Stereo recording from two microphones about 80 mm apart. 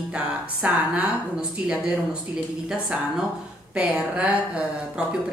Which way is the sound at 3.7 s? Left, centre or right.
Centre.